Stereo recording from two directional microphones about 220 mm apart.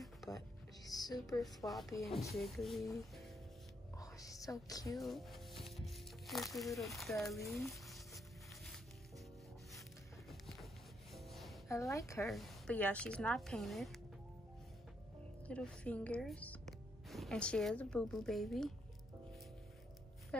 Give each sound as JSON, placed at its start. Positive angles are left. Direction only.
{"t": 0.8, "sound": "music", "side_deg": 15}
{"t": 1.6, "sound": "a woman's voice", "side_deg": 15}
{"t": 2.3, "sound": "speech", "side_deg": 0}
{"t": 4.0, "sound": "music", "side_deg": 15}
{"t": 4.9, "sound": "speech", "side_deg": 0}
{"t": 7.5, "sound": "stir", "side_deg": 0}
{"t": 10.4, "sound": "a sound", "side_deg": 0}
{"t": 11.1, "sound": "music", "side_deg": 0}
{"t": 11.7, "sound": "a woman's voice", "side_deg": 15}
{"t": 12.3, "sound": "speech", "side_deg": 0}
{"t": 15.4, "sound": "speech", "side_deg": 5}